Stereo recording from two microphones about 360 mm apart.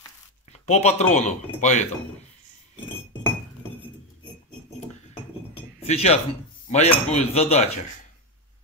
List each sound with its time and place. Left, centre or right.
0.5 s speech: centre
5.6 s chink: centre
6.7 s cutlery: centre